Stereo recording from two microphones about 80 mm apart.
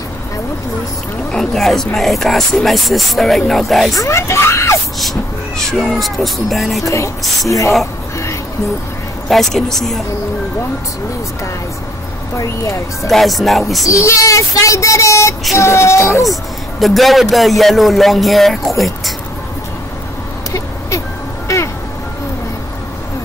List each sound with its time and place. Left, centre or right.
1.3 s speech: centre
3.9 s speech: left
5.6 s speech: centre
6.8 s speech: left
9.3 s speech: centre
12.4 s speech: left
13.1 s speech: centre
13.8 s speech: left
16.8 s speech: centre